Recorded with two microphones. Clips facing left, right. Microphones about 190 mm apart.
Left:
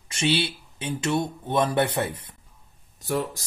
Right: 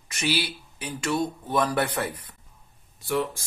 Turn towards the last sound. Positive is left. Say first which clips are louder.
# even
turn(degrees=40)  # may be behind; listen again after turning